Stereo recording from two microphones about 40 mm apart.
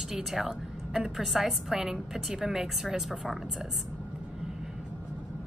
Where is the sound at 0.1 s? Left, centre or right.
Centre.